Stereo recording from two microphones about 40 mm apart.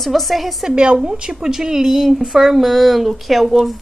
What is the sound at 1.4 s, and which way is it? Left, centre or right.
A woman's voice, centre.